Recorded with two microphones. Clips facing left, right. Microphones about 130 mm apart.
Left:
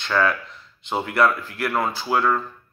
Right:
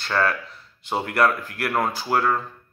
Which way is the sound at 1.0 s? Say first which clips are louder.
Left 1 dB; 45° right (ahead or behind).